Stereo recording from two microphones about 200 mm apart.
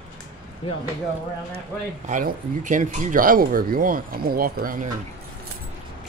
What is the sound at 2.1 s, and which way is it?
Speech, 40° right (ahead or behind).